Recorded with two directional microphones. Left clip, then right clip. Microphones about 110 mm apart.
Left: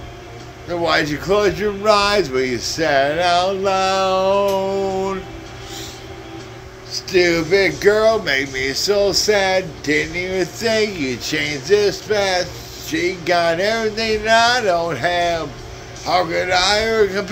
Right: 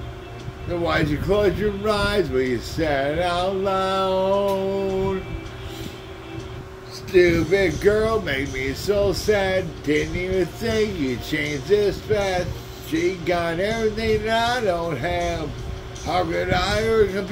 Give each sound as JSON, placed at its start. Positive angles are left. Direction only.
{"t": 0.8, "sound": "speech", "side_deg": -40}
{"t": 7.1, "sound": "speech", "side_deg": -25}